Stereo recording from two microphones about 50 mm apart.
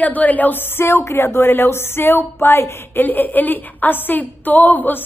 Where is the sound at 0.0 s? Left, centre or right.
Left.